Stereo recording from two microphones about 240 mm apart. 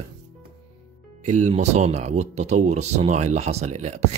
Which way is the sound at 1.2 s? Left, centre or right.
Right.